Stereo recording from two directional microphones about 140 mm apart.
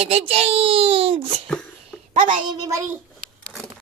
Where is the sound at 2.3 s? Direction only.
25° right (ahead or behind).